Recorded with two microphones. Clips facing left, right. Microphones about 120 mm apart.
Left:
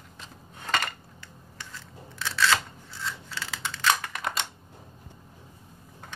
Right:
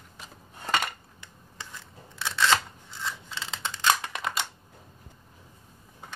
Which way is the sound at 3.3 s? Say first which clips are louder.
Even; 20° right (ahead or behind).